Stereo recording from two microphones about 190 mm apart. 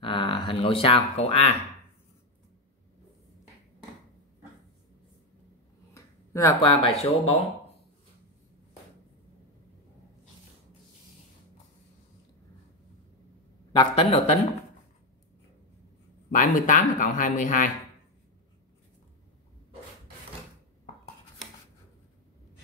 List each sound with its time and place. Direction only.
0.0 s a sound: 25° left (ahead or behind)
0.5 s speech: 30° left (ahead or behind)
5.9 s a sound: 15° left (ahead or behind)
6.6 s speech: 25° left (ahead or behind)
13.7 s speech: 30° left (ahead or behind)
16.3 s speech: 45° left (ahead or behind)